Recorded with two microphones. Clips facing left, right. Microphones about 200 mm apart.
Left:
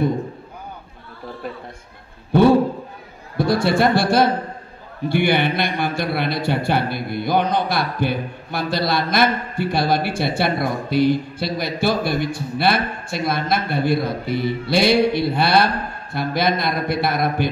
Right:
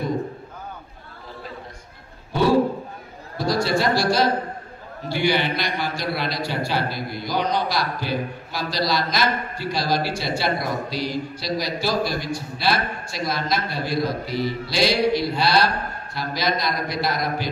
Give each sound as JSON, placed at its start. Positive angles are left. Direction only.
{"t": 3.3, "sound": "a man's voice", "side_deg": 55}